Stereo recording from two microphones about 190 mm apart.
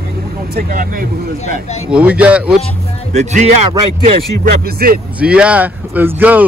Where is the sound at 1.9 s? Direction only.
5° right (ahead or behind).